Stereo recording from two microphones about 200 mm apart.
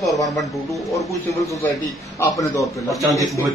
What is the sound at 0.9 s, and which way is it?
A man's voice, 15° left (ahead or behind).